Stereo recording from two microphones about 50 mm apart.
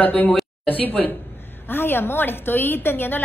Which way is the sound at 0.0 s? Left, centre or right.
Left.